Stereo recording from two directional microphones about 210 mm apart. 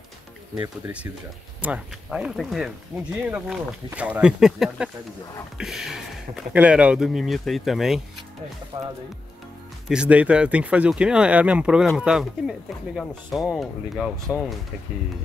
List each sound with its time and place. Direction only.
1.6 s speech: 5° right (ahead or behind)
8.7 s speech: 25° right (ahead or behind)
9.8 s speech: 5° right (ahead or behind)